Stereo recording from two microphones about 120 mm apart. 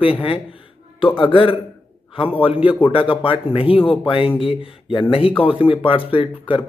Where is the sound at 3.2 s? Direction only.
50° left (ahead or behind).